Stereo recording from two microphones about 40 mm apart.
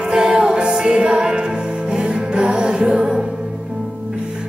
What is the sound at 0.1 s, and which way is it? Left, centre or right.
Music, centre.